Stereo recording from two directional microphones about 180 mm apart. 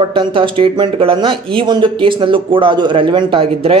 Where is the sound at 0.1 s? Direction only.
30° right (ahead or behind).